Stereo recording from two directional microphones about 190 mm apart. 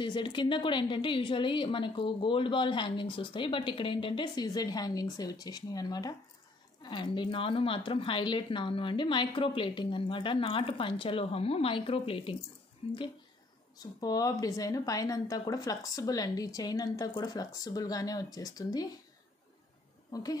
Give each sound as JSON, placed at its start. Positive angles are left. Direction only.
{"t": 0.0, "sound": "a woman's voice", "side_deg": 25}
{"t": 13.9, "sound": "a woman's voice", "side_deg": 20}
{"t": 20.1, "sound": "a woman's voice", "side_deg": 20}